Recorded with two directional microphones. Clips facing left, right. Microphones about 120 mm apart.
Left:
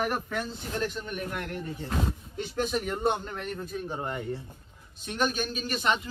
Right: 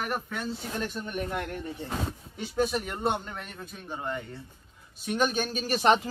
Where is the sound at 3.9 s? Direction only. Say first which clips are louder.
Right 1 dB; 15° left (ahead or behind).